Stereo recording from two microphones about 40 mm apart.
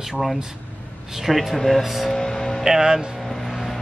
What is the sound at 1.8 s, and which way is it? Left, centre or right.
Speech, centre.